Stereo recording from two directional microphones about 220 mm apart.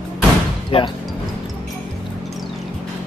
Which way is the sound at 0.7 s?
25° left (ahead or behind).